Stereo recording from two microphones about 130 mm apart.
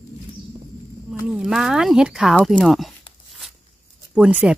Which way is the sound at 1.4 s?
5° right (ahead or behind).